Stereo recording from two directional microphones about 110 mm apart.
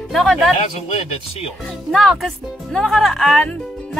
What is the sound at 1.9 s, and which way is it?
Music, centre (ahead or behind).